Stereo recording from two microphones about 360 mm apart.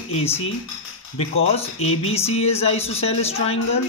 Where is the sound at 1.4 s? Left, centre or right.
Centre.